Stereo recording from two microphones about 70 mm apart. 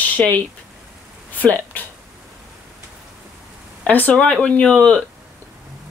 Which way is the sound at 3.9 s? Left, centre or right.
Left.